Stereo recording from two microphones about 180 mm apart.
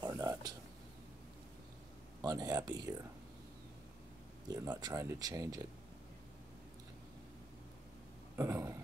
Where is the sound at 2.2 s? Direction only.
20° right (ahead or behind).